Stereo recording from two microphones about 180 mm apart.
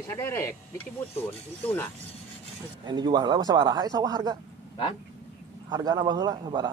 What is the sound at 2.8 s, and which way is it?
Speech, 25° right (ahead or behind).